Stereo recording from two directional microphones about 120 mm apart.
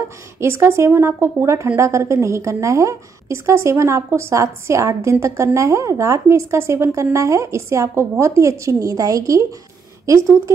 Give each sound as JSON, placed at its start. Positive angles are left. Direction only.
{"t": 0.4, "sound": "a woman's voice", "side_deg": -20}